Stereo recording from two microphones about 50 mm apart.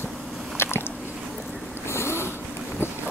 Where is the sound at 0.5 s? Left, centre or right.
Left.